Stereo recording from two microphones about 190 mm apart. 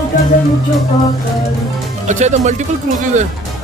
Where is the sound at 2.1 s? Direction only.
40° right (ahead or behind).